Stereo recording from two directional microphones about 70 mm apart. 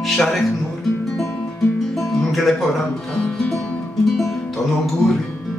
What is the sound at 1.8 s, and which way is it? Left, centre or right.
Music, centre.